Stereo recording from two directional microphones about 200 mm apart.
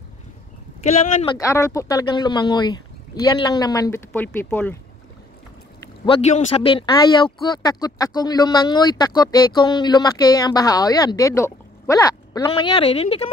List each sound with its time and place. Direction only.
1.2 s speech: 20° left (ahead or behind)
6.0 s speech: 35° left (ahead or behind)